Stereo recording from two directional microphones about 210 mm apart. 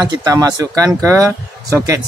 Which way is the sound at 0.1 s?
15° right (ahead or behind).